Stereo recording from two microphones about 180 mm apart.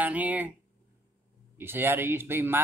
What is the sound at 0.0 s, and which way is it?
Speech, 10° right (ahead or behind).